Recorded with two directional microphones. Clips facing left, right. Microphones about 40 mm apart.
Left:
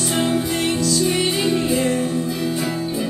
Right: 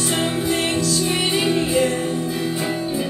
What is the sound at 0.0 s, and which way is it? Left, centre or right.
Music, centre.